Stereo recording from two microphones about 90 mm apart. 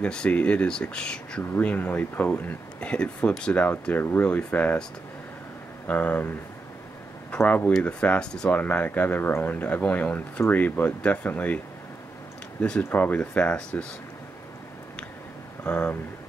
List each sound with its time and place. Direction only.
0.0 s speech: 10° left (ahead or behind)
5.9 s speech: 15° left (ahead or behind)
15.6 s speech: 10° left (ahead or behind)